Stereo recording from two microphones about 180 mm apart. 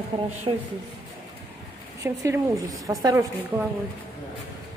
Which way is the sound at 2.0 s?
15° right (ahead or behind).